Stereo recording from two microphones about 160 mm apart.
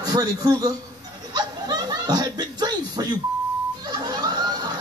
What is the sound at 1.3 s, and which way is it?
Chuckle, 25° right (ahead or behind).